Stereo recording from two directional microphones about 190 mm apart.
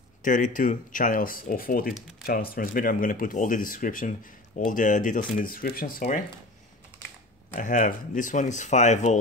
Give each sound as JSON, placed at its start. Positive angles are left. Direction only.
{"t": 0.2, "sound": "speech", "side_deg": 45}
{"t": 7.5, "sound": "speech", "side_deg": 45}